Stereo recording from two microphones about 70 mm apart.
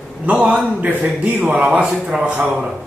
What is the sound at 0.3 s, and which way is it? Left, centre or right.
A man's voice, centre.